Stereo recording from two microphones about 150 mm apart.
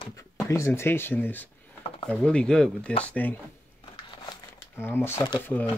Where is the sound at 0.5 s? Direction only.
15° left (ahead or behind).